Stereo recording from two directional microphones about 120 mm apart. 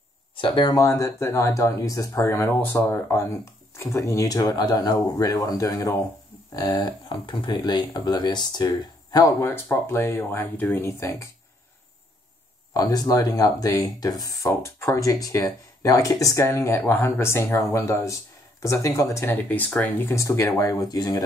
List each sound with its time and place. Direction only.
0.4 s speech: 45° left (ahead or behind)
0.7 s speech: 25° left (ahead or behind)
9.4 s speech: 20° left (ahead or behind)
12.7 s speech: 30° left (ahead or behind)